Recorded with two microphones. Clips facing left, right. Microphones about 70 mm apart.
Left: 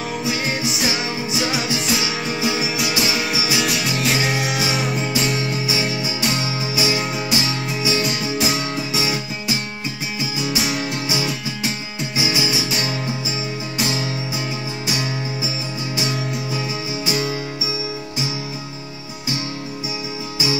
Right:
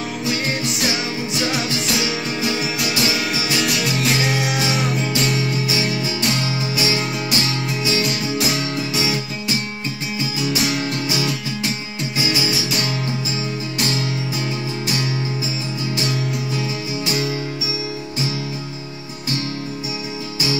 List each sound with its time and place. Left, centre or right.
0.2 s music: centre
10.5 s music: centre
17.0 s music: centre